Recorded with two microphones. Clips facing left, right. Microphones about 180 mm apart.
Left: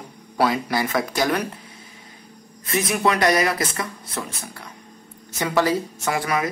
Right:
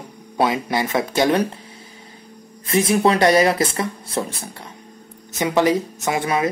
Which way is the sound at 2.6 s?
30° right (ahead or behind).